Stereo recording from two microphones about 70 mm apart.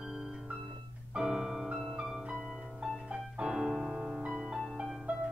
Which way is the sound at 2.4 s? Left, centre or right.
Centre.